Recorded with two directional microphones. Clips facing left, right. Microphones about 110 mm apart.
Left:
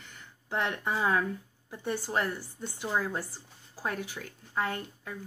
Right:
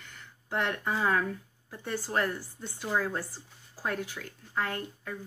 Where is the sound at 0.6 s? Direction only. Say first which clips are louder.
Even; 20° left (ahead or behind).